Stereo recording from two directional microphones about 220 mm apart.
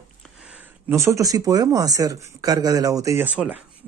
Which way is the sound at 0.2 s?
5° right (ahead or behind).